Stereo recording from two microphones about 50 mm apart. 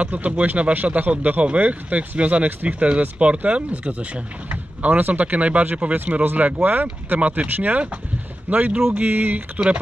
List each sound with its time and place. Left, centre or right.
0.0 s speech: right
4.5 s speech: right